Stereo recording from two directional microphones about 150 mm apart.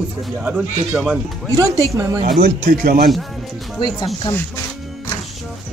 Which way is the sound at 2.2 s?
80° right.